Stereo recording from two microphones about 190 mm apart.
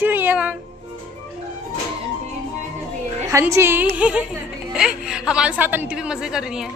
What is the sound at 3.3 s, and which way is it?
A woman's voice, 15° right (ahead or behind).